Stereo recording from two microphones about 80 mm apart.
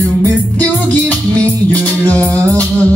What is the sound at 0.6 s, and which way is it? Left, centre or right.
Music, centre.